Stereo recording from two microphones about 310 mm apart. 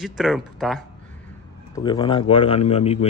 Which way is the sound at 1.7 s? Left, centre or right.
Centre.